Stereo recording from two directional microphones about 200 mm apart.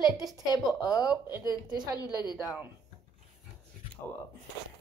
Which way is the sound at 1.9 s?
20° left (ahead or behind).